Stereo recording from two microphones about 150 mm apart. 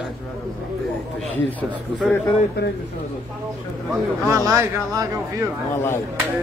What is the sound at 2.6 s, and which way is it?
Speech, 90° left.